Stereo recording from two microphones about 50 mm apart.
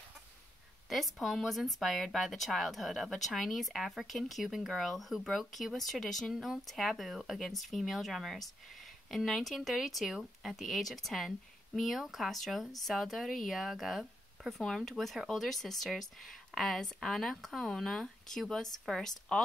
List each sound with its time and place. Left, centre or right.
0.8 s speech: centre
6.3 s speech: centre